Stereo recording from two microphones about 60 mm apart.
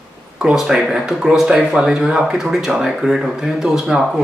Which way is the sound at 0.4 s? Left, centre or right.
Centre.